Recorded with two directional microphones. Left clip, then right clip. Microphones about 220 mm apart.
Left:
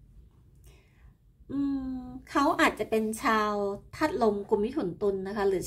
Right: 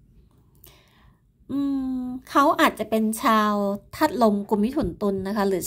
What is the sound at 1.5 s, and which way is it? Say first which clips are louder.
A woman's voice: right 5 dB; 30° right (ahead or behind).